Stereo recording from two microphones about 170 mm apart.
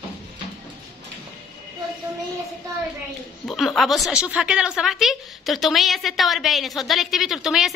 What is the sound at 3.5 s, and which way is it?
A woman's voice, centre (ahead or behind).